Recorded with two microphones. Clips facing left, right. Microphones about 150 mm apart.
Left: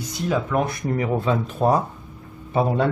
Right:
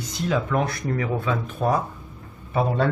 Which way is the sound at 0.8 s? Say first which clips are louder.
Left 3 dB; 20° left (ahead or behind).